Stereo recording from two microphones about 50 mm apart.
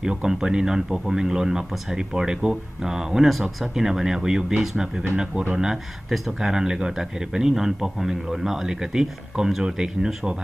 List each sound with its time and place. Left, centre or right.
0.0 s a man's voice: centre
6.1 s a man's voice: centre